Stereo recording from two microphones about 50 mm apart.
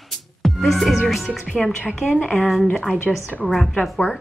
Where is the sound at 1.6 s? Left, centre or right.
Centre.